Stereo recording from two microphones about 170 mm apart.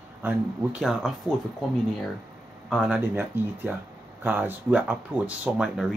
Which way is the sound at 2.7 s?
Centre (ahead or behind).